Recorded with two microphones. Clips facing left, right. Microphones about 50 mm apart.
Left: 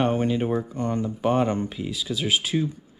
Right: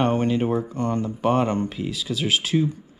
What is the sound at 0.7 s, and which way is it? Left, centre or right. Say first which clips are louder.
Speech: right 2 dB; right.